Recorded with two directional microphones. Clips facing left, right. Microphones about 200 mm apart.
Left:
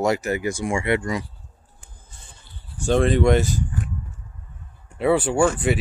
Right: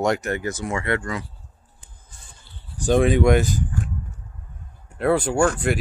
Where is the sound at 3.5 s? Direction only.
45° right (ahead or behind).